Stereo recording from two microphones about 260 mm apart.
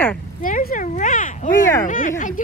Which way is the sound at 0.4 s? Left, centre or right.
Left.